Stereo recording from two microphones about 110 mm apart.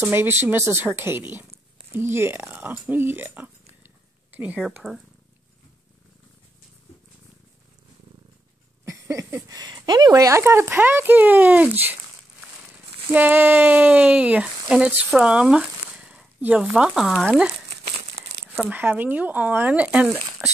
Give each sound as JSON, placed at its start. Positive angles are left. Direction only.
{"t": 0.0, "sound": "speech", "side_deg": -20}
{"t": 4.8, "sound": "speech", "side_deg": 5}
{"t": 9.1, "sound": "speech", "side_deg": -30}
{"t": 13.1, "sound": "speech", "side_deg": -15}
{"t": 18.6, "sound": "speech", "side_deg": -15}
{"t": 20.2, "sound": "speech", "side_deg": 0}